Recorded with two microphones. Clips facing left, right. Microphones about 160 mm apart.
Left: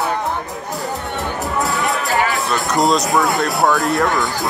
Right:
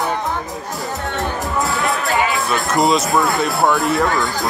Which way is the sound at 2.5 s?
Centre (ahead or behind).